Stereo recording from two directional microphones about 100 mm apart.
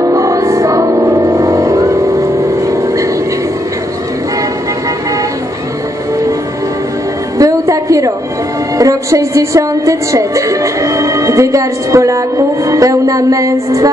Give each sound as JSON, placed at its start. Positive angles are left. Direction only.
{"t": 0.0, "sound": "music", "side_deg": -35}
{"t": 2.7, "sound": "vehicle", "side_deg": -30}
{"t": 7.3, "sound": "music", "side_deg": -35}
{"t": 8.7, "sound": "a woman's voice", "side_deg": -35}